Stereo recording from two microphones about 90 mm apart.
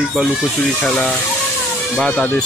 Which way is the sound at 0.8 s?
15° left (ahead or behind).